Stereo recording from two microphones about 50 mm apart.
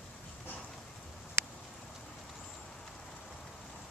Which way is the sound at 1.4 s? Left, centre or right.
Right.